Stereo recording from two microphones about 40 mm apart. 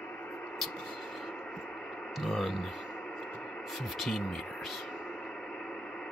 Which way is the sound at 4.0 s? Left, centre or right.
Centre.